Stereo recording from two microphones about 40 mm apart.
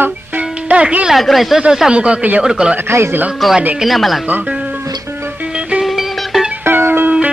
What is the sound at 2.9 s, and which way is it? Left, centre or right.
Speech, right.